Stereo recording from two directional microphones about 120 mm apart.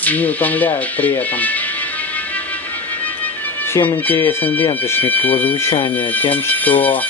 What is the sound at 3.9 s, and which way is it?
Speech, 20° left (ahead or behind).